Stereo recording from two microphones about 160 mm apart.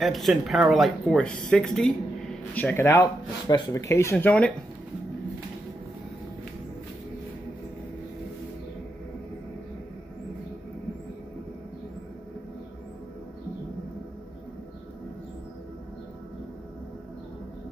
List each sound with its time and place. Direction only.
0.0 s speech: centre (ahead or behind)